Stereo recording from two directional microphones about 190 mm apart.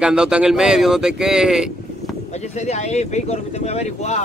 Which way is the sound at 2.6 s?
35° left (ahead or behind).